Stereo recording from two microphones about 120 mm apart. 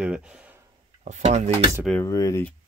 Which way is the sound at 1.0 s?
75° right (ahead or behind).